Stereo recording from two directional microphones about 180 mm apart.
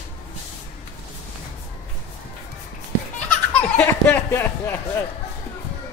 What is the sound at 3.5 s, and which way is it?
Speech, 10° left (ahead or behind).